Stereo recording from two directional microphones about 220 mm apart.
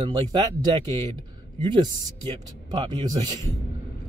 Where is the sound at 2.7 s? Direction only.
20° right (ahead or behind).